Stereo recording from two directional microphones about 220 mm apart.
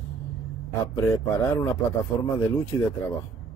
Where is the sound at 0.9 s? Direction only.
15° left (ahead or behind).